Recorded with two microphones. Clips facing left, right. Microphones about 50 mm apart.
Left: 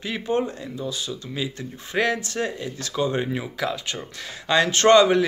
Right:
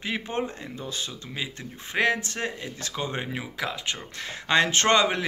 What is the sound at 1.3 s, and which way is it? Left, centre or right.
Speech, right.